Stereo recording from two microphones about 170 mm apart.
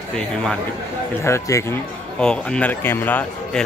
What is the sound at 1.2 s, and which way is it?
A man's voice, 15° left (ahead or behind).